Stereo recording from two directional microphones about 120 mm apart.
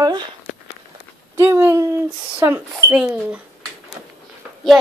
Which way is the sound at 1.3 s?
20° right (ahead or behind).